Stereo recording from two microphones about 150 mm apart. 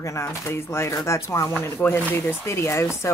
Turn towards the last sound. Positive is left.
turn(degrees=20)  # may be behind; listen again after turning